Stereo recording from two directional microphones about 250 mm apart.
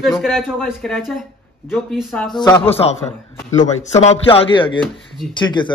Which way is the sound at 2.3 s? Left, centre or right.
Centre.